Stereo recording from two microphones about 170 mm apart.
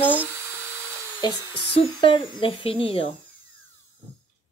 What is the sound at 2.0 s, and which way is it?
Speech, 30° left (ahead or behind).